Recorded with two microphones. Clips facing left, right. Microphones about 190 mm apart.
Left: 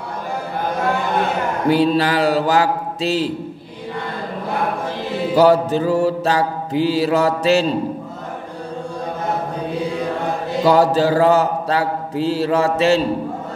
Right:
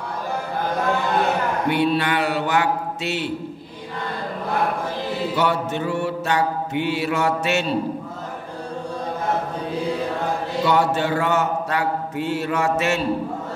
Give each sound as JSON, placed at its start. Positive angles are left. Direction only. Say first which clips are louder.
{"t": 1.7, "sound": "mantra", "louder": "left 6 dB", "side_deg": 35}
{"t": 5.3, "sound": "mantra", "louder": "left 11 dB", "side_deg": 35}
{"t": 10.6, "sound": "mantra", "louder": "left 6 dB", "side_deg": 35}